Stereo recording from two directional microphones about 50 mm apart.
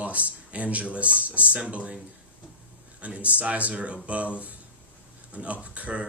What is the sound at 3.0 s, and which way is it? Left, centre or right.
A man's voice, right.